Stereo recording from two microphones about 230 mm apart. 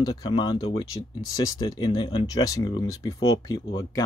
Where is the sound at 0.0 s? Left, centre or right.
Centre.